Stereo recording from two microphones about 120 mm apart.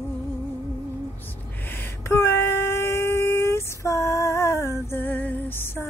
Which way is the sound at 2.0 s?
20° left (ahead or behind).